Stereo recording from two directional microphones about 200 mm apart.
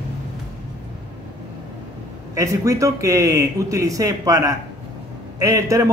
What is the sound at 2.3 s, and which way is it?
Speech, 15° right (ahead or behind).